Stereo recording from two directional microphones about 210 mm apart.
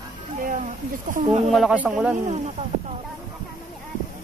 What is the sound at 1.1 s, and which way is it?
Speech, 30° right (ahead or behind).